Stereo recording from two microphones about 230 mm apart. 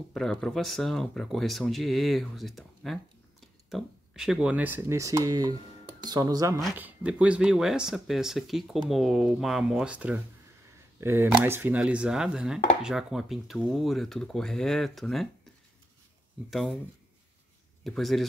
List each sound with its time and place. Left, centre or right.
0.1 s speech: centre
16.4 s speech: centre
17.8 s speech: centre